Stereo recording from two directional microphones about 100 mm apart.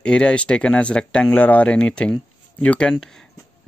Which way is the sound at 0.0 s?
10° left (ahead or behind).